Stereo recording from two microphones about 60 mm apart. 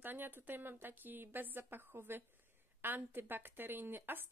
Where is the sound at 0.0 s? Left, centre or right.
Right.